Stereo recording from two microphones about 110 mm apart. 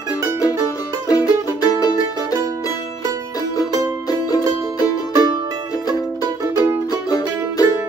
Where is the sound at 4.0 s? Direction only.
35° left (ahead or behind).